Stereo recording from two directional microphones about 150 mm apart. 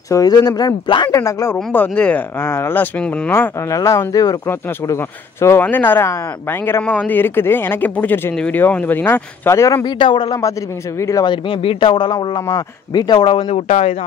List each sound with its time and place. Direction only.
0.1 s speech: 25° left (ahead or behind)
1.1 s speech: 20° left (ahead or behind)
9.9 s speech: 30° left (ahead or behind)
11.2 s speech: 35° left (ahead or behind)